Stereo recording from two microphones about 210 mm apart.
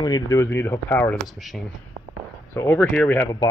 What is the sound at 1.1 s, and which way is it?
Speech, centre (ahead or behind).